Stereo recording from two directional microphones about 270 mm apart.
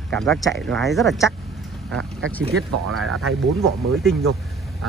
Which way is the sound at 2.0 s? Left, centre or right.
Right.